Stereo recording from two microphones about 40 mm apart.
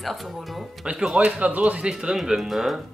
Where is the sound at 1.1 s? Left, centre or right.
Right.